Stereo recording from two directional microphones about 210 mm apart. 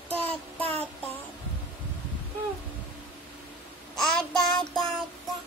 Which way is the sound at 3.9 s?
5° left (ahead or behind).